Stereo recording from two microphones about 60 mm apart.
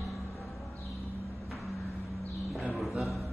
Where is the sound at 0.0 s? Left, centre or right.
Centre.